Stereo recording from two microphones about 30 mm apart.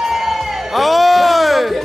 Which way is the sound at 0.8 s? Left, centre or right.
Centre.